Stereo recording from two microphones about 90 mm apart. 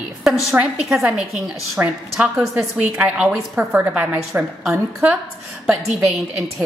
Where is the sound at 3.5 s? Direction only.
25° right (ahead or behind).